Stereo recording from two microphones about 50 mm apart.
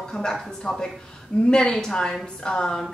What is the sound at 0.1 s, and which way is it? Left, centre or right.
A woman's voice, centre.